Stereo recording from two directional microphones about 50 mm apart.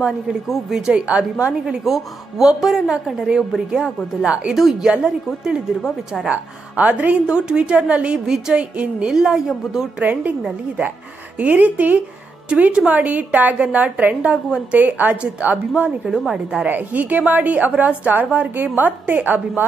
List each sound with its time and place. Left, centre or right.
0.5 s a woman's voice: centre
0.9 s a woman's voice: right
1.9 s a woman's voice: centre
6.2 s a woman's voice: right
7.2 s a woman's voice: centre
8.3 s a woman's voice: centre
8.7 s a woman's voice: right
9.1 s a woman's voice: centre
10.1 s a woman's voice: right
11.3 s a woman's voice: right
16.1 s a woman's voice: centre
16.6 s a woman's voice: right